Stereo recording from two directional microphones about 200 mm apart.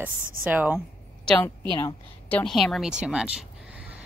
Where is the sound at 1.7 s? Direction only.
15° left (ahead or behind).